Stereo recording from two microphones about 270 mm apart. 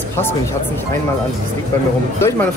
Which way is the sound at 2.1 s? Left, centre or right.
Centre.